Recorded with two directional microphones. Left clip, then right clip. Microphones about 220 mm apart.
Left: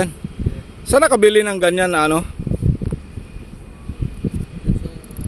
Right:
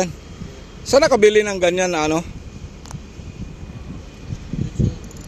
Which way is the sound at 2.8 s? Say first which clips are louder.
Left 8 dB; 30° right (ahead or behind).